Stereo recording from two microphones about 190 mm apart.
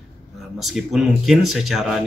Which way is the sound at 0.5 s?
Centre (ahead or behind).